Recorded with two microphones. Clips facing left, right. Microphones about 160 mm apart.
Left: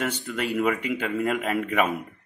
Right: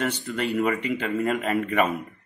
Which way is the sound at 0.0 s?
Centre (ahead or behind).